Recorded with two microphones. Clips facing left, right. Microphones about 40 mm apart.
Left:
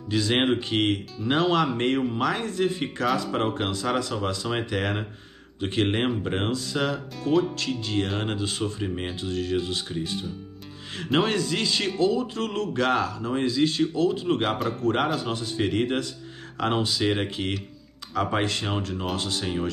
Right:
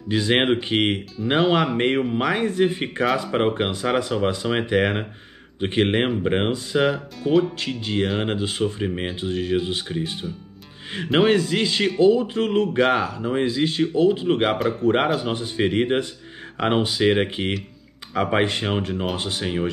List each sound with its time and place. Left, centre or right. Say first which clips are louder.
0.1 s speech: right 3 dB; right
7.2 s speech: right 4 dB; centre
7.5 s speech: right 2 dB; right